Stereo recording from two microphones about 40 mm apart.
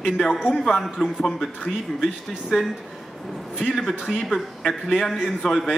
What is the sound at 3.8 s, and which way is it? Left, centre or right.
A man's voice, centre.